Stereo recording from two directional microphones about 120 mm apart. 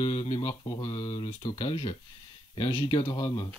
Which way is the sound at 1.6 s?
60° left (ahead or behind).